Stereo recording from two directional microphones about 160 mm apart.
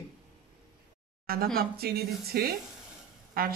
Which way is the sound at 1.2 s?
70° right (ahead or behind).